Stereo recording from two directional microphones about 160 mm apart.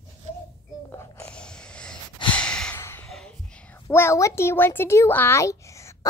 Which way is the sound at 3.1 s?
5° left (ahead or behind).